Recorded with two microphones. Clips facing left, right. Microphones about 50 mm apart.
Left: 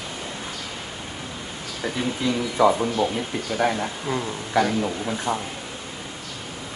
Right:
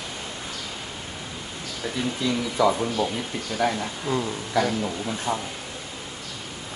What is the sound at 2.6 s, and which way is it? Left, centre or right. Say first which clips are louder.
Speech: left 3 dB; left.